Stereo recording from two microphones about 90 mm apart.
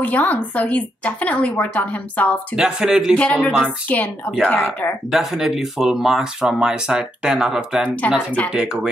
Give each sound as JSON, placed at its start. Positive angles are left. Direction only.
{"t": 0.0, "sound": "a woman's voice", "side_deg": 15}
{"t": 2.5, "sound": "speech", "side_deg": -10}
{"t": 3.2, "sound": "a woman's voice", "side_deg": 15}
{"t": 5.1, "sound": "speech", "side_deg": -5}